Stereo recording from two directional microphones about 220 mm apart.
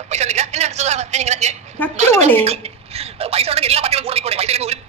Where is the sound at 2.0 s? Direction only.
30° right (ahead or behind).